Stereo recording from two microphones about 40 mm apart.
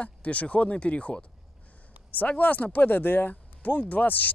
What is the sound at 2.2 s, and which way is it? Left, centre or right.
Speech, left.